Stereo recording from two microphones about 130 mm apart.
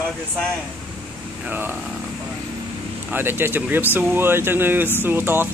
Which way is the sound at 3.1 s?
15° right (ahead or behind).